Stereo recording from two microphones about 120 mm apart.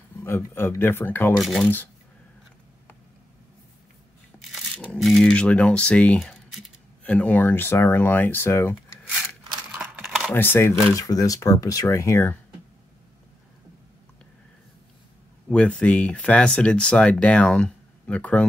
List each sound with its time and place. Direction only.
0.2 s speech: 20° left (ahead or behind)
1.4 s speech: centre (ahead or behind)
4.4 s crumpling: centre (ahead or behind)
7.1 s speech: 10° left (ahead or behind)
9.8 s a sound: 5° right (ahead or behind)
10.3 s speech: 20° left (ahead or behind)
15.5 s speech: 10° left (ahead or behind)